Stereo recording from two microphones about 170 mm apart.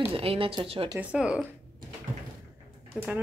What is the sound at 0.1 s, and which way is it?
Speech, 35° right (ahead or behind).